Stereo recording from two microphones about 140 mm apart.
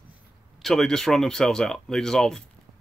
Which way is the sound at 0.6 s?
Centre (ahead or behind).